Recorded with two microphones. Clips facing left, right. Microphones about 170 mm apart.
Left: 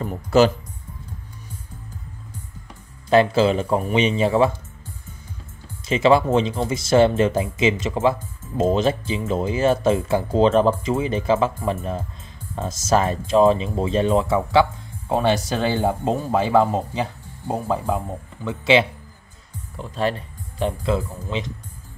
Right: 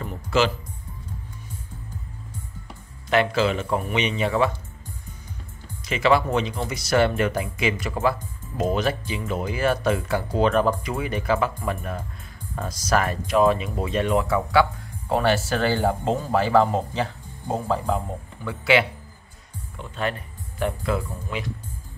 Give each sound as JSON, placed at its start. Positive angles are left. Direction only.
{"t": 0.0, "sound": "music", "side_deg": 40}
{"t": 3.1, "sound": "speech", "side_deg": 30}
{"t": 5.9, "sound": "speech", "side_deg": 25}